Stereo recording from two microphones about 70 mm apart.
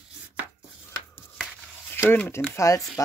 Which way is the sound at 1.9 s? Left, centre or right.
Left.